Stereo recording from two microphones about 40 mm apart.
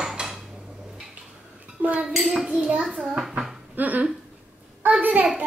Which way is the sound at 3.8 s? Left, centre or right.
Right.